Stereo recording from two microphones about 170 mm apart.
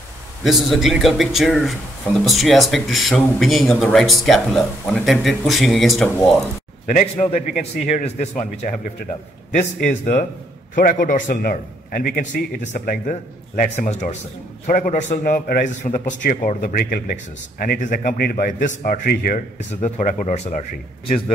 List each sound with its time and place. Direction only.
0.4 s speech: centre (ahead or behind)
6.9 s a man's voice: 50° left (ahead or behind)
9.8 s a man's voice: 45° left (ahead or behind)
14.7 s a man's voice: 50° left (ahead or behind)
19.8 s a man's voice: 45° left (ahead or behind)